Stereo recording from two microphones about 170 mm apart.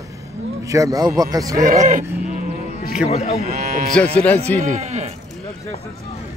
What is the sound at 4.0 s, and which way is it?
Speech, 5° left (ahead or behind).